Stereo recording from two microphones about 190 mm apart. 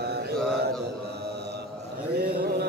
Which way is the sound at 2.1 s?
55° right (ahead or behind).